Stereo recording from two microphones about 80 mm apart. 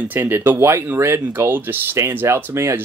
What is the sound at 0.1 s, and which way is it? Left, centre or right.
Speech, right.